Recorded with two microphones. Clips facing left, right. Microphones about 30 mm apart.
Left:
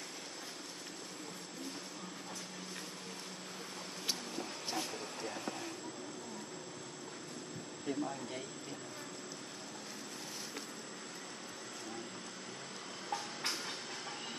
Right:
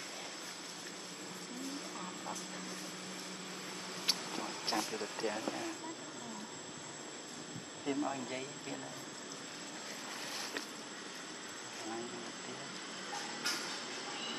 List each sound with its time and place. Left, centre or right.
4.0 s vehicle: right
7.8 s speech: right